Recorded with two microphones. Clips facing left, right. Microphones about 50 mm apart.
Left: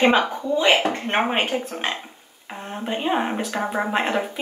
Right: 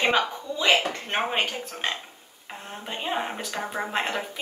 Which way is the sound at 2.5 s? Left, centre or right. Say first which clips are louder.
Left 7 dB; centre.